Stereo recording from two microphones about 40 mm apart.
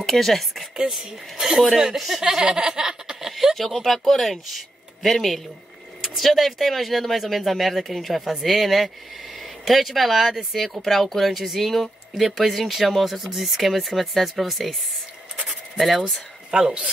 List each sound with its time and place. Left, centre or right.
0.0 s speech: centre
1.7 s speech: centre
2.2 s laughter: centre
3.3 s a sound: centre
3.5 s speech: centre
16.0 s speech: right